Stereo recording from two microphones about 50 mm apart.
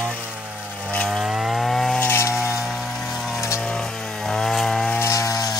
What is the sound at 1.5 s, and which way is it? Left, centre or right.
Wood, centre.